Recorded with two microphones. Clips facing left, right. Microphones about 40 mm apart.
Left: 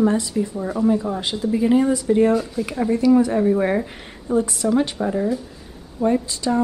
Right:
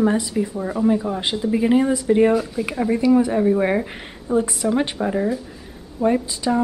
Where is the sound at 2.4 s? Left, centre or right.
Centre.